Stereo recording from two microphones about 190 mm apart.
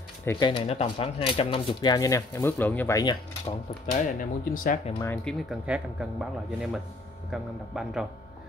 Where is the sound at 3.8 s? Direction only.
45° left (ahead or behind).